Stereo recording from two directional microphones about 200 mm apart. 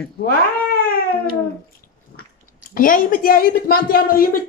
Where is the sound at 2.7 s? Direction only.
45° left (ahead or behind).